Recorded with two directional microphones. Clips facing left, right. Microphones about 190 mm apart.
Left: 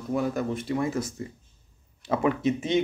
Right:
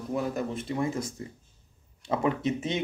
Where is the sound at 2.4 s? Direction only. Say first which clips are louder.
Left 3 dB; centre (ahead or behind).